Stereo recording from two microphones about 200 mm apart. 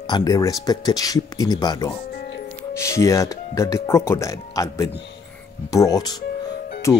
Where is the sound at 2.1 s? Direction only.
55° left (ahead or behind).